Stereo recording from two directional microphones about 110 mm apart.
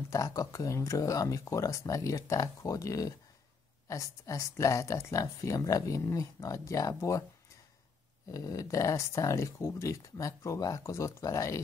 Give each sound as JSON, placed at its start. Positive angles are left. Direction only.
{"t": 0.1, "sound": "speech", "side_deg": 30}
{"t": 8.3, "sound": "speech", "side_deg": 30}